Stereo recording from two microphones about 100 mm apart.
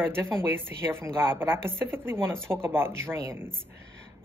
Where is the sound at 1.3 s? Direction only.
25° right (ahead or behind).